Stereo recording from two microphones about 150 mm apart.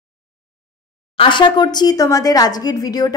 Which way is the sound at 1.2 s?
30° left (ahead or behind).